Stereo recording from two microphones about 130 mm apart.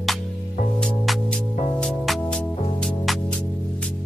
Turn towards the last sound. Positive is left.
turn(degrees=5)  # may be behind; listen again after turning